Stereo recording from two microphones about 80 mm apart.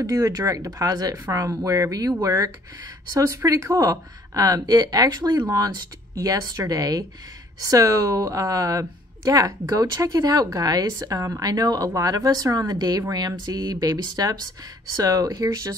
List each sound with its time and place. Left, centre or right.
0.0 s speech: right
3.3 s speech: right